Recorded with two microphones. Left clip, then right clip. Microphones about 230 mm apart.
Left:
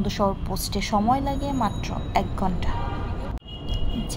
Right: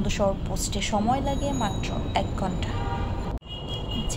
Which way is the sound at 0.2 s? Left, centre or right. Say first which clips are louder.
Left 1 dB; centre.